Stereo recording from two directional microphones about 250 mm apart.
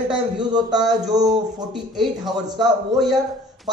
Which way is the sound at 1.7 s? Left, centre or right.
Centre.